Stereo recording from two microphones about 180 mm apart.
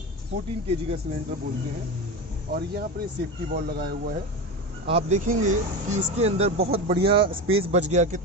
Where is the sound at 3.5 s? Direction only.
60° right (ahead or behind).